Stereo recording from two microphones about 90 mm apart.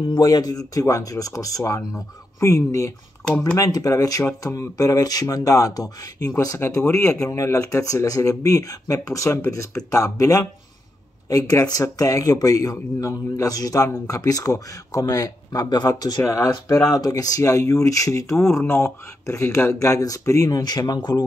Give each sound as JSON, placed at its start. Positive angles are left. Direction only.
{"t": 0.2, "sound": "speech", "side_deg": 45}
{"t": 3.3, "sound": "speech", "side_deg": 10}
{"t": 3.5, "sound": "speech", "side_deg": 40}